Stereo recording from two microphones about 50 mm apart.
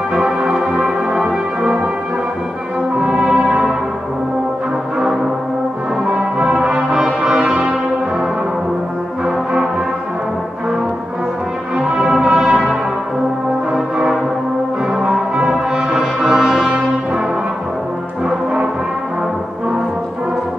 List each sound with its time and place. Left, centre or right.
0.1 s music: centre
3.1 s brass instrument: centre
6.4 s brass instrument: centre
9.2 s brass instrument: centre
12.0 s music: centre
15.0 s brass instrument: centre